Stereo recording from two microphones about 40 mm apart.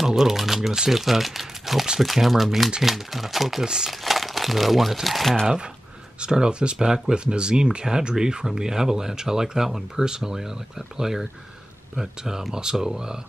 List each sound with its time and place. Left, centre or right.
0.0 s speech: centre
3.6 s speech: centre
4.0 s crumpling: centre
5.0 s speech: centre
6.2 s speech: right